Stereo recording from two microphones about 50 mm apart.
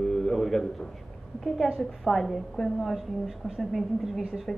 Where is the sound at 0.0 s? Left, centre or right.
Centre.